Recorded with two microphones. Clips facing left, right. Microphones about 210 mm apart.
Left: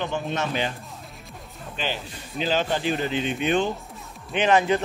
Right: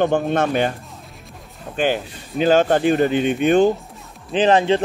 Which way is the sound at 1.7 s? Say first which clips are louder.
Right 10 dB; 50° right (ahead or behind).